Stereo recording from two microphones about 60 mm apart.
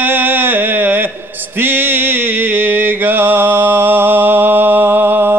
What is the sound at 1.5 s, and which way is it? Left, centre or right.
Mantra, right.